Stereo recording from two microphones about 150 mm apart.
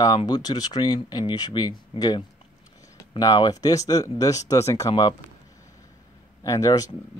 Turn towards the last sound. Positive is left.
turn(degrees=25)  # may be behind; listen again after turning